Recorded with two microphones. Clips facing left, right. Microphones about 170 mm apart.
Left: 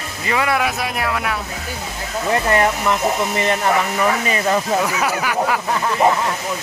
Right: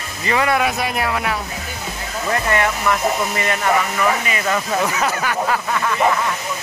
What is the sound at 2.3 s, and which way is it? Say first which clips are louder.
Speech: left 3 dB; 30° left (ahead or behind).